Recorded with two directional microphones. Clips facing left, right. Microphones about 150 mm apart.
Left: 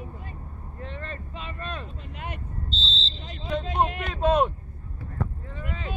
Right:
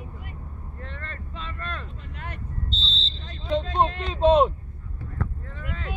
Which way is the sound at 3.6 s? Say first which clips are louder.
Right 2 dB; 15° left (ahead or behind).